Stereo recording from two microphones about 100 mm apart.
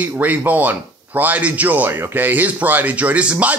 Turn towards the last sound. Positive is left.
turn(degrees=-15)  # may be behind; listen again after turning